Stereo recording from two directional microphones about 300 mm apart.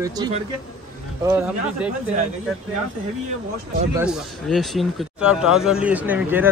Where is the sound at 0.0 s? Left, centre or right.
Centre.